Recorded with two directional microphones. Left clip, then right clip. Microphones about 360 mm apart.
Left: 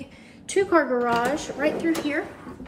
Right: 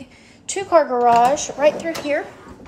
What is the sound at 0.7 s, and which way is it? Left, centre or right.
Speech, right.